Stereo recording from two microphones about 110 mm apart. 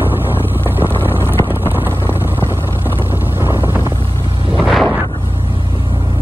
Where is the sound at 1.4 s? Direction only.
20° right (ahead or behind).